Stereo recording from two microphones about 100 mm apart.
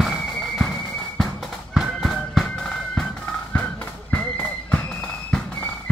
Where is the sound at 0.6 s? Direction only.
5° left (ahead or behind).